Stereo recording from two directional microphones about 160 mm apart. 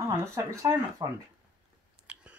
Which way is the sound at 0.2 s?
20° right (ahead or behind).